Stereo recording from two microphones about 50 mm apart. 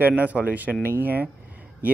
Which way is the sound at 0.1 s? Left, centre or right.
Right.